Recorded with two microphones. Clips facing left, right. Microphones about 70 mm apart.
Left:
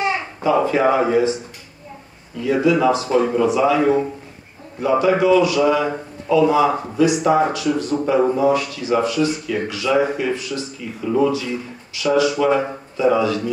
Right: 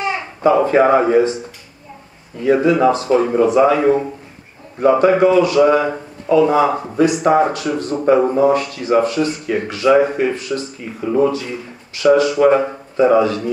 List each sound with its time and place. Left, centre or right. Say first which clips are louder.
0.4 s speech: right 5 dB; right
2.4 s speech: right 3 dB; right